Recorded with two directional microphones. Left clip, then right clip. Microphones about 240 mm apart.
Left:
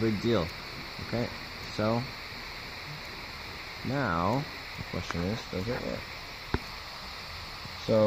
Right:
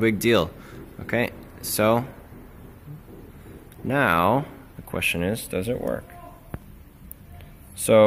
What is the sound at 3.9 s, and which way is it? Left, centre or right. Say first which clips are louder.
Speech: right 10 dB; right.